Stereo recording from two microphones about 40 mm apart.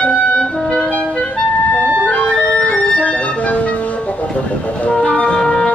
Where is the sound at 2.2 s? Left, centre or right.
Left.